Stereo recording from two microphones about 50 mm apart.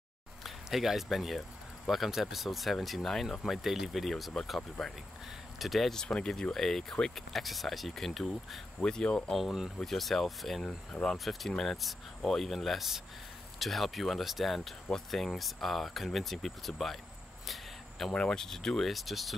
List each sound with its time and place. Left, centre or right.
0.4 s speech: centre
8.8 s speech: centre
9.4 s speech: centre
10.6 s speech: centre
11.2 s speech: centre
17.5 s a sound: centre
18.1 s speech: centre